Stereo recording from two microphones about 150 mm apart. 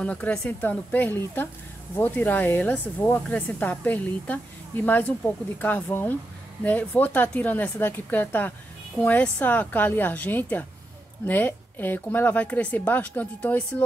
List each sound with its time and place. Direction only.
0.0 s speech: 10° left (ahead or behind)